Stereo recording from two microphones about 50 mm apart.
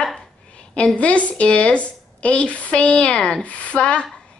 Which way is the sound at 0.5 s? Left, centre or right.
Left.